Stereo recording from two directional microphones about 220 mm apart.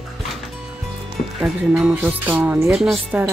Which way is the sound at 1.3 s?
Centre (ahead or behind).